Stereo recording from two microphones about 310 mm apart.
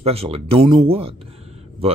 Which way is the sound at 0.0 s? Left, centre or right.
Centre.